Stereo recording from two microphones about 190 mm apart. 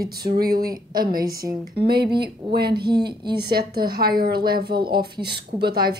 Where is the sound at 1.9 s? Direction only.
55° right (ahead or behind).